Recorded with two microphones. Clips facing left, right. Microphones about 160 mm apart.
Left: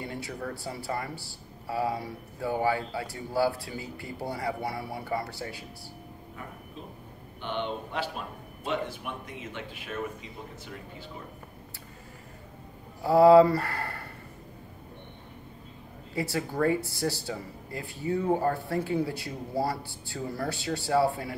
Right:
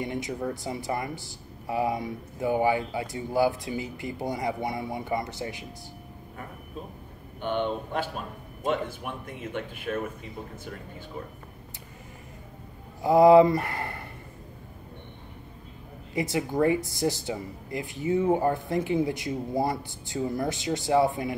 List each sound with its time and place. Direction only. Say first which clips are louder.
0.0 s speech: right 5 dB; 20° right (ahead or behind)
7.4 s speech: right 5 dB; 50° right (ahead or behind)
13.0 s speech: right 1 dB; 15° right (ahead or behind)
16.2 s speech: right 3 dB; 20° right (ahead or behind)